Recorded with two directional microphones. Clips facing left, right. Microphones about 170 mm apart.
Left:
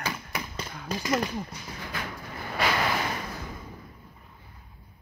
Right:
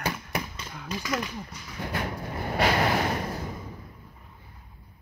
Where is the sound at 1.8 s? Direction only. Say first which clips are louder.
Right 6 dB; 55° right (ahead or behind).